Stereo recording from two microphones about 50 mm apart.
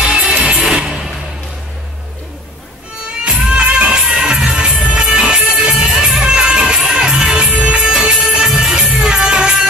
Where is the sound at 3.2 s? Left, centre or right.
Right.